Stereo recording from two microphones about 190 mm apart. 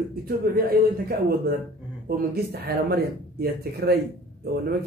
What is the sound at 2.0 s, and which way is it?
Speech, 55° right (ahead or behind).